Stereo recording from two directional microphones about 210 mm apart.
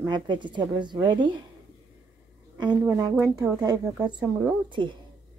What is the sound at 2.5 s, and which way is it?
A woman's voice, 20° right (ahead or behind).